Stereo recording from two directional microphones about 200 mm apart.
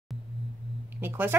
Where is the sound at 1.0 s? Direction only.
10° right (ahead or behind).